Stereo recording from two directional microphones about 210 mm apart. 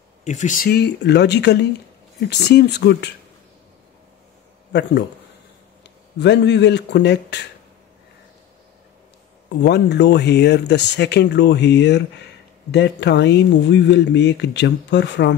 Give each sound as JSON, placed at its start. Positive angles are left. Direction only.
{"t": 0.2, "sound": "speech", "side_deg": 35}
{"t": 6.1, "sound": "speech", "side_deg": 55}
{"t": 9.6, "sound": "speech", "side_deg": 55}